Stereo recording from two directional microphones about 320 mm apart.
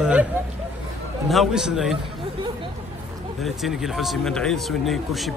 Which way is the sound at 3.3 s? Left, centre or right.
Centre.